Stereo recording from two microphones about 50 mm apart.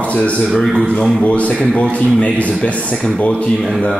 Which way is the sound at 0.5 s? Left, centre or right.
Centre.